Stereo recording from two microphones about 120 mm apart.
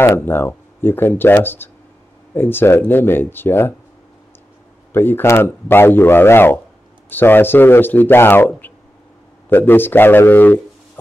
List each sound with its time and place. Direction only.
0.0 s speech: 20° left (ahead or behind)
4.9 s speech: 15° left (ahead or behind)